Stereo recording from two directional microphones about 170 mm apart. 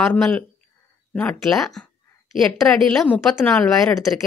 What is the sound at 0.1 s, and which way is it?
A woman's voice, 10° left (ahead or behind).